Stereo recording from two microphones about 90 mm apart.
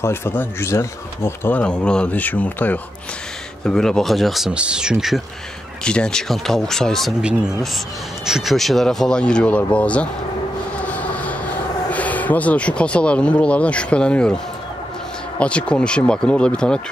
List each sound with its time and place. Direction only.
0.0 s speech: 25° left (ahead or behind)
1.5 s speech: 15° left (ahead or behind)
3.6 s speech: 5° left (ahead or behind)
4.5 s speech: 10° right (ahead or behind)
5.9 s speech: 10° left (ahead or behind)
7.2 s speech: 10° right (ahead or behind); by 10.0 s 15° left (ahead or behind)
10.8 s a sound: 15° left (ahead or behind)
15.3 s speech: 15° left (ahead or behind)